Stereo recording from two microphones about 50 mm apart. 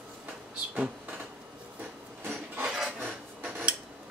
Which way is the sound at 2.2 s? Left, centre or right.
Right.